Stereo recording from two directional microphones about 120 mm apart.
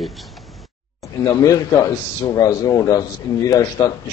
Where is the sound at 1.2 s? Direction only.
30° left (ahead or behind).